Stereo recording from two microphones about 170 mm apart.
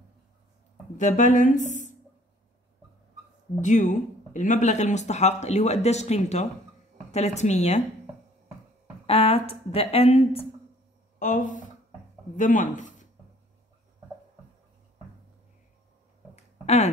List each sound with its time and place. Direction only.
0.9 s speech: 45° left (ahead or behind)
3.6 s speech: 45° left (ahead or behind)
9.0 s speech: 35° left (ahead or behind)
11.1 s speech: 50° left (ahead or behind)
16.6 s a sound: 40° left (ahead or behind)